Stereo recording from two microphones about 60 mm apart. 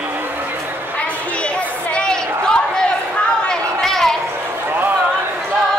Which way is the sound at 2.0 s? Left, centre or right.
Centre.